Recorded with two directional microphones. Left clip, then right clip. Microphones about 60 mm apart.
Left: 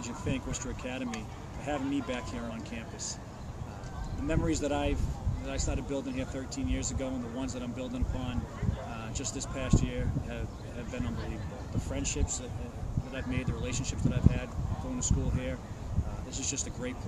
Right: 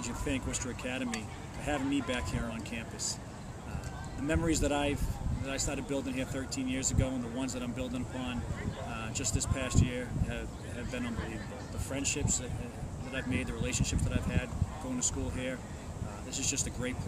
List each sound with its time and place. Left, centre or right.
0.0 s speech: centre
4.3 s speech: centre
9.1 s speech: centre
11.9 s speech: centre